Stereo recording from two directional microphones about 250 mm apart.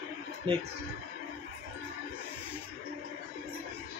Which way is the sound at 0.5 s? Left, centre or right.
Centre.